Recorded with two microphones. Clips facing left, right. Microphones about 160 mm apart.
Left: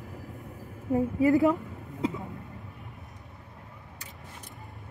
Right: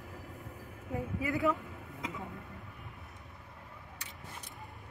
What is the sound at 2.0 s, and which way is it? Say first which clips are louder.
Vehicle: left 12 dB; 30° left (ahead or behind).